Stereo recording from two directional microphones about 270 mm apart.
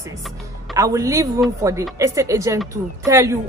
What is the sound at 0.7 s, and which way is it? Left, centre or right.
Speech, centre.